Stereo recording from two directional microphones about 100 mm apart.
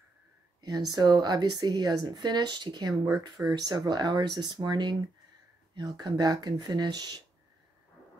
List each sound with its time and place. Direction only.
0.6 s a woman's voice: 40° right (ahead or behind)